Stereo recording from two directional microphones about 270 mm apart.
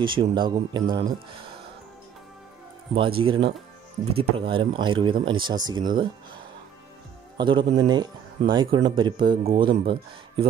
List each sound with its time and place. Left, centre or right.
0.0 s speech: centre
0.8 s speech: right
3.0 s speech: centre
7.3 s speech: centre